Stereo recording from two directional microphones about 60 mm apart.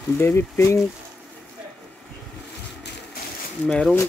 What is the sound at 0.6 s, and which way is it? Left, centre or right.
Speech, left.